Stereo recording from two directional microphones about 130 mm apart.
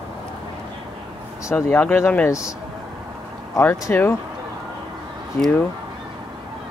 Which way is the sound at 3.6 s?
15° left (ahead or behind).